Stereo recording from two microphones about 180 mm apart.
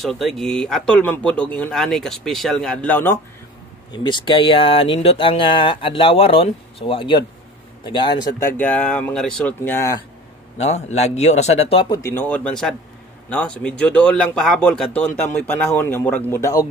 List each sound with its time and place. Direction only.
0.0 s speech: centre (ahead or behind)
3.9 s speech: 25° left (ahead or behind)
8.5 s speech: 10° left (ahead or behind)
10.6 s a man's voice: 40° left (ahead or behind)
12.0 s speech: 15° left (ahead or behind)